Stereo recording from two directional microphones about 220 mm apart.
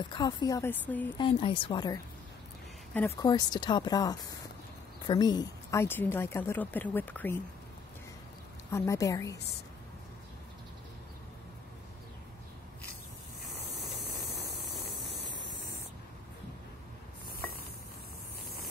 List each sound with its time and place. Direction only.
0.0 s a woman's voice: 20° left (ahead or behind)
1.2 s speech: 25° left (ahead or behind)
3.2 s a woman's voice: 20° left (ahead or behind)
8.6 s a woman's voice: 15° left (ahead or behind)
13.5 s a sound: centre (ahead or behind)